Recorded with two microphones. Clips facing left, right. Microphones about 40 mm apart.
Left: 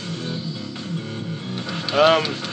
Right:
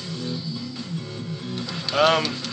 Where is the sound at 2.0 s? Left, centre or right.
Centre.